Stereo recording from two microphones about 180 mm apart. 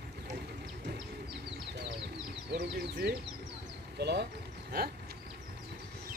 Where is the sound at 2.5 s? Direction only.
70° right (ahead or behind).